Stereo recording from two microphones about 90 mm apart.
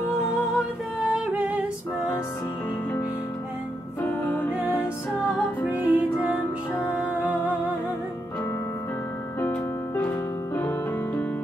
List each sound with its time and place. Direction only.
1.3 s music: 15° right (ahead or behind)
4.1 s music: 20° left (ahead or behind)
5.9 s music: 20° right (ahead or behind)
9.5 s music: 15° left (ahead or behind)